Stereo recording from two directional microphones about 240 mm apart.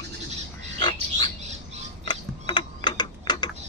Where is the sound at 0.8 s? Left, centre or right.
Centre.